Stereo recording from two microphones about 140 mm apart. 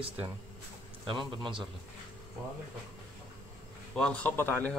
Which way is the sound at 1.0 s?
35° right (ahead or behind).